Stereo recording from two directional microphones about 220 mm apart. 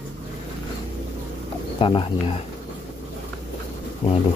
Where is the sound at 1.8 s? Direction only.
20° left (ahead or behind).